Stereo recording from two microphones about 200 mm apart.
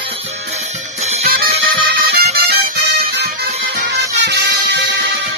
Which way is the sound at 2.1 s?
50° right (ahead or behind).